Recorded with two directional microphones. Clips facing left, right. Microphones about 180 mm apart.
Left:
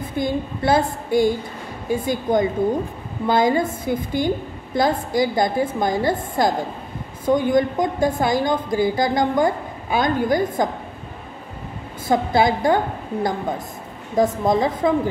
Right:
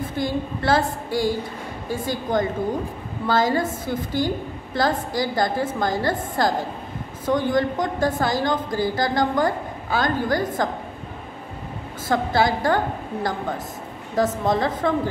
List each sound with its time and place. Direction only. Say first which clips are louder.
0.1 s a woman's voice: left 5 dB; 20° left (ahead or behind)
12.1 s a woman's voice: left 3 dB; 20° left (ahead or behind)